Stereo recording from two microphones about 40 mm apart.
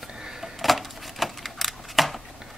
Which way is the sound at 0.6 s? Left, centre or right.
Centre.